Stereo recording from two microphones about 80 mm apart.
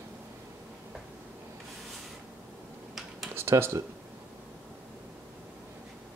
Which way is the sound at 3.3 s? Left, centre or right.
Right.